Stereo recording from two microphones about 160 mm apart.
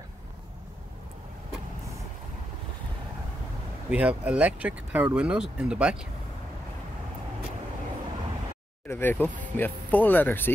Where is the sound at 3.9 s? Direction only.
5° right (ahead or behind).